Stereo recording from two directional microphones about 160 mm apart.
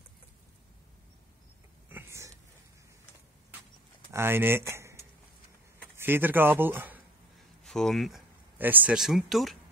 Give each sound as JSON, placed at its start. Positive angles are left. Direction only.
{"t": 1.9, "sound": "vehicle", "side_deg": -15}
{"t": 4.1, "sound": "speech", "side_deg": -15}
{"t": 5.9, "sound": "speech", "side_deg": -15}
{"t": 7.6, "sound": "speech", "side_deg": 5}
{"t": 8.5, "sound": "speech", "side_deg": -10}